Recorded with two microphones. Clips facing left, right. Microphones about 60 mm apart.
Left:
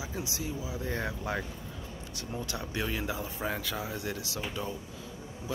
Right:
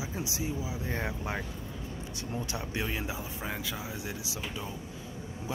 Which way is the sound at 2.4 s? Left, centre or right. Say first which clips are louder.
Left 1 dB; right.